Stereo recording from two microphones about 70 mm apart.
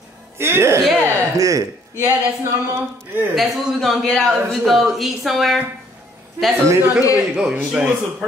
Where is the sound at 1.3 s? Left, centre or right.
Right.